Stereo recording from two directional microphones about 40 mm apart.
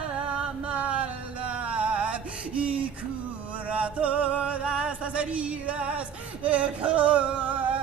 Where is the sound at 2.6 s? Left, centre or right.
Right.